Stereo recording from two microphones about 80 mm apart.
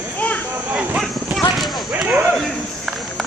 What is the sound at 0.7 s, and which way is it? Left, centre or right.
Clip-clop, centre.